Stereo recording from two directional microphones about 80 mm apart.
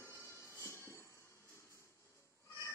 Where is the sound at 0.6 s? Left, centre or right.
Left.